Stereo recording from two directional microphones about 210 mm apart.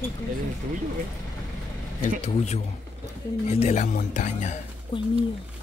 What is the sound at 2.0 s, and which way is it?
Speech, 30° left (ahead or behind).